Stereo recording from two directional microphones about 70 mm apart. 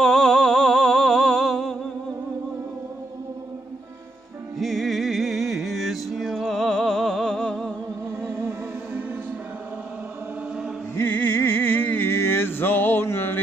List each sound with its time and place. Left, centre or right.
0.0 s a sound: centre
4.6 s music: centre
11.0 s music: left